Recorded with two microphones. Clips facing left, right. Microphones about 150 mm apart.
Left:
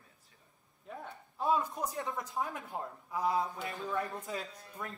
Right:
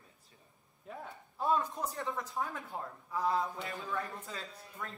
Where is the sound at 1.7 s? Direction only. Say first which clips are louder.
Left 1 dB; 15° left (ahead or behind).